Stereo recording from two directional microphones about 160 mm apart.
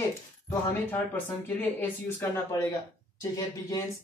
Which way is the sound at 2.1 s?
20° left (ahead or behind).